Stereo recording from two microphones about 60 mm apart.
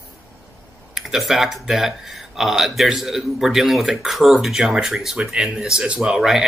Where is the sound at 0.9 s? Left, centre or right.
Centre.